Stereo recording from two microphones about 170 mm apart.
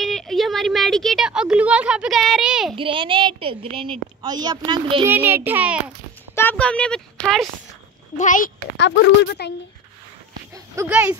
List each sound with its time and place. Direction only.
0.0 s a woman's voice: centre (ahead or behind)
2.7 s a woman's voice: 30° right (ahead or behind)
5.0 s a child's voice: 15° right (ahead or behind)
6.5 s speech: 5° left (ahead or behind)
8.2 s a child's voice: 50° left (ahead or behind)
8.7 s speech: 85° left
10.5 s speech: 15° right (ahead or behind)